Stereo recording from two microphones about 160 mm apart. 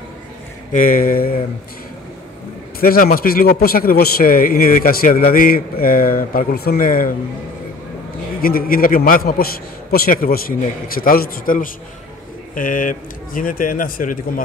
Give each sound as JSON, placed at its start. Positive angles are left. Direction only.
{"t": 0.7, "sound": "a man's voice", "side_deg": 60}
{"t": 2.8, "sound": "a man's voice", "side_deg": 65}
{"t": 8.4, "sound": "a man's voice", "side_deg": 65}